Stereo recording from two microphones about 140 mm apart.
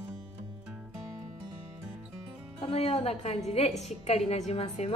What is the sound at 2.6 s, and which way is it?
A woman's voice, 45° left (ahead or behind).